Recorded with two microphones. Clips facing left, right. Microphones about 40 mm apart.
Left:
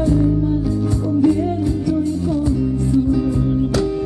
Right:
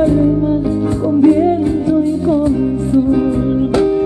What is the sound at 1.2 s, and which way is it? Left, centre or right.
Music, right.